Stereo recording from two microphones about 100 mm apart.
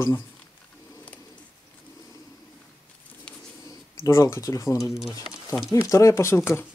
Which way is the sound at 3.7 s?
30° left (ahead or behind).